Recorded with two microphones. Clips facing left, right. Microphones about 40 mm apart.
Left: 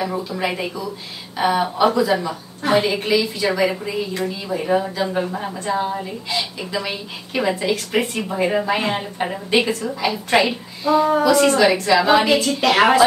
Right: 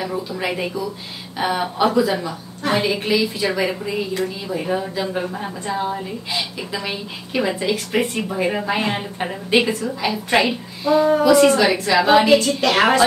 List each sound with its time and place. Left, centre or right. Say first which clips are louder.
0.0 s a woman's voice: left 1 dB; centre
3.0 s a woman's voice: even; centre